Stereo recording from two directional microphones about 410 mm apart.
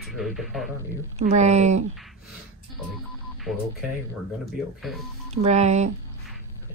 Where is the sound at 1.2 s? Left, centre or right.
Centre.